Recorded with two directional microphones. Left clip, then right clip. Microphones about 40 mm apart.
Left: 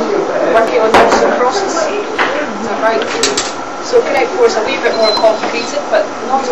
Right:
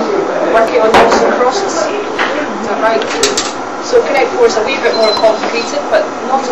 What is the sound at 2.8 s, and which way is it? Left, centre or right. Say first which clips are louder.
Bird: right 1 dB; right.